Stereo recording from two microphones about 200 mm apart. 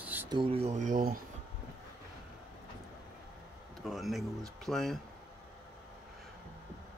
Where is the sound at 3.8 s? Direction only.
Centre (ahead or behind).